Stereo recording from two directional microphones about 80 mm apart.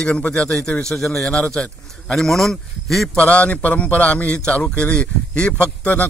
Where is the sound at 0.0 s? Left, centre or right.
Centre.